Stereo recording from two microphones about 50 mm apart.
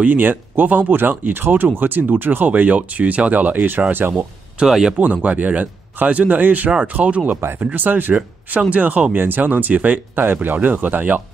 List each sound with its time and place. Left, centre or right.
0.0 s speech: right
4.6 s speech: centre
4.9 s speech: right
9.1 s speech: right